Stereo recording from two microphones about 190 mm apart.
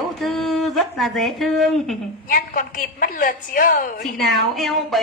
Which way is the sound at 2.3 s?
45° left (ahead or behind).